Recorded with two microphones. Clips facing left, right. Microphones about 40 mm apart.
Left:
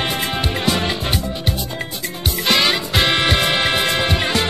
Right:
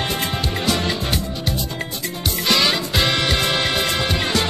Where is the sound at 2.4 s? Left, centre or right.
Left.